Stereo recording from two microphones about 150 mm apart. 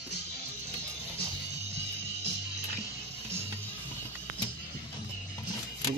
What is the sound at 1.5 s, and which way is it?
Music, 45° right (ahead or behind).